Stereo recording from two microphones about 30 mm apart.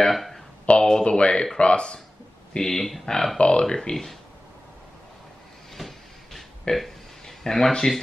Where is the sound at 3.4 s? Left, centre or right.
Left.